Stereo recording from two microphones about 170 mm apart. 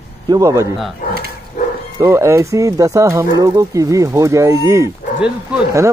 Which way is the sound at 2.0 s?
15° right (ahead or behind).